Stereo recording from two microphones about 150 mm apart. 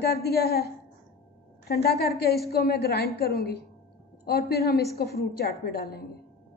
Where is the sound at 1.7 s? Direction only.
90° left.